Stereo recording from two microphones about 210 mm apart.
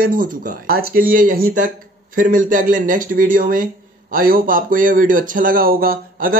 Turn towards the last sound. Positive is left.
turn(degrees=-45)  # may be behind; listen again after turning